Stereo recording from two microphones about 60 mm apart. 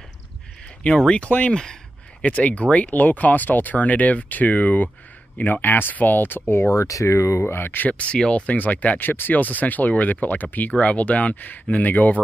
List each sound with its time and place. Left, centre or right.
0.8 s speech: centre
2.2 s speech: left
6.7 s speech: left